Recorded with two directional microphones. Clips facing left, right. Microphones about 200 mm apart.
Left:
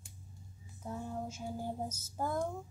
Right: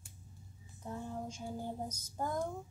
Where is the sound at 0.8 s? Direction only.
5° left (ahead or behind).